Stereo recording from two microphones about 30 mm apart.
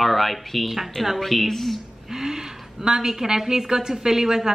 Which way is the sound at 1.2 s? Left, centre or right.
Centre.